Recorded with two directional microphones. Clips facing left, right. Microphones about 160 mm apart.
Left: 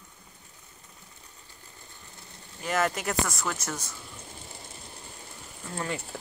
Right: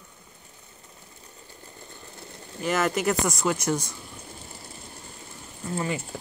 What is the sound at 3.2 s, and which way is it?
Speech, 15° right (ahead or behind).